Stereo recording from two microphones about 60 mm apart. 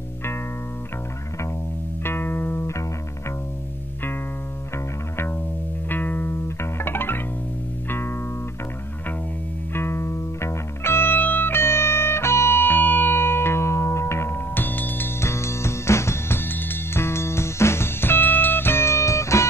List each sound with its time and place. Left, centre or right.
2.0 s music: left
5.9 s music: left
9.8 s music: left
15.1 s music: left